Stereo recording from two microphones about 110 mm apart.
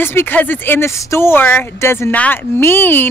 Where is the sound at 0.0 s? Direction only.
20° left (ahead or behind).